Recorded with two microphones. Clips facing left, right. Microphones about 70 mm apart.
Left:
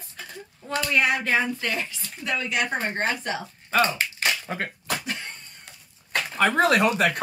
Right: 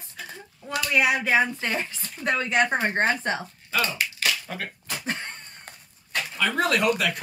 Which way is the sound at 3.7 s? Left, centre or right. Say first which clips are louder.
Left 4 dB; left.